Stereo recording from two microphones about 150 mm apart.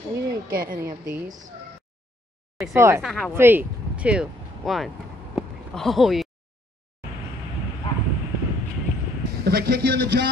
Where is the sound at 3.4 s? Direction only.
15° right (ahead or behind).